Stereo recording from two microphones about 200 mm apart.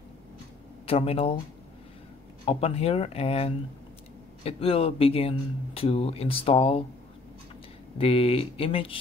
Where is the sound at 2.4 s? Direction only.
30° left (ahead or behind).